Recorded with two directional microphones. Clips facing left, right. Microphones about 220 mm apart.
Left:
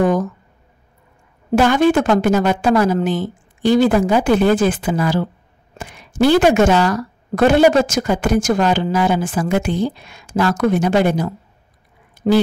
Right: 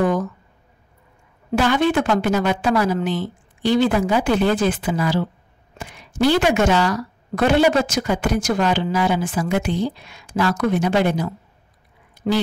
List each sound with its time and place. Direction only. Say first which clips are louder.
0.0 s speech: left 3 dB; 45° left (ahead or behind)
1.5 s a woman's voice: left 5 dB; 45° left (ahead or behind)
6.2 s a woman's voice: left 4 dB; 50° left (ahead or behind)
12.2 s a sound: left 5 dB; 50° left (ahead or behind)